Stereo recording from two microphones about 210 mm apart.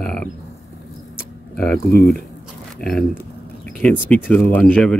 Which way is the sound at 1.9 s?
50° left (ahead or behind).